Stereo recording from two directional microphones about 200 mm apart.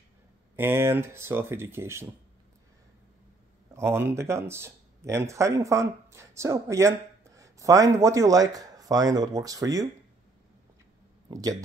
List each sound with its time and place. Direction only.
0.6 s speech: 10° right (ahead or behind)
3.7 s speech: 10° right (ahead or behind)